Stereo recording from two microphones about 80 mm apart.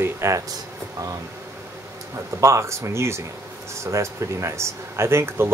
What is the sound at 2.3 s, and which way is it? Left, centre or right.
Speech, right.